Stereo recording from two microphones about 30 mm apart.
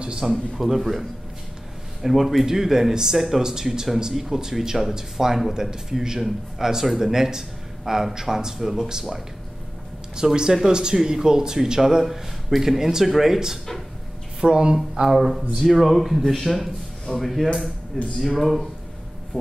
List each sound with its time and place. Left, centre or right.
0.2 s a man's voice: centre
2.4 s speech: centre
14.4 s speech: right
15.0 s a man's voice: centre